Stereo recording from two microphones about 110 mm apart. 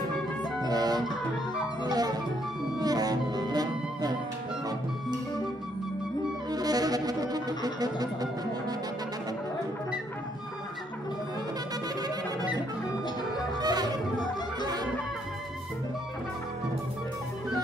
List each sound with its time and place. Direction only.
0.7 s music: 40° right (ahead or behind)
6.5 s music: 35° right (ahead or behind)
13.6 s music: 40° right (ahead or behind)